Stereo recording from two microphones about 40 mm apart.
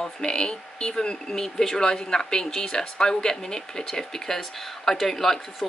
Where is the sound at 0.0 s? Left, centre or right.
Left.